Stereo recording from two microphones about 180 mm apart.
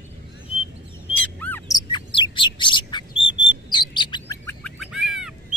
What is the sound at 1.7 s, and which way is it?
Bird, 25° left (ahead or behind).